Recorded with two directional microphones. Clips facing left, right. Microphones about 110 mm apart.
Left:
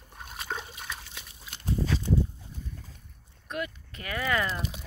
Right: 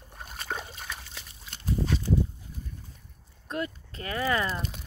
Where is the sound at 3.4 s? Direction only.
30° right (ahead or behind).